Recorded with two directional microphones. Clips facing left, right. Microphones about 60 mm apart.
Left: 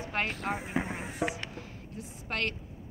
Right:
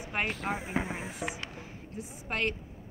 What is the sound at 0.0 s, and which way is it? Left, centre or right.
A woman's voice, centre.